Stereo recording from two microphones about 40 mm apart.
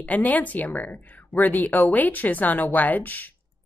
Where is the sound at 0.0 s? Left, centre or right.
Left.